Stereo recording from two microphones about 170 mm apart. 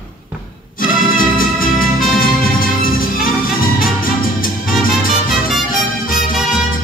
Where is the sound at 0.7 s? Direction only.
55° left (ahead or behind).